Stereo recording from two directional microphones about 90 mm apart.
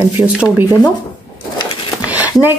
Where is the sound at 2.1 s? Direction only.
20° right (ahead or behind).